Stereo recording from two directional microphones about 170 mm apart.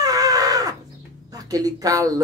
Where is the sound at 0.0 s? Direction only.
20° right (ahead or behind).